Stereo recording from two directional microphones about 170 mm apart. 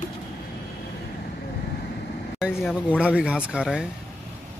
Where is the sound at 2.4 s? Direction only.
5° left (ahead or behind).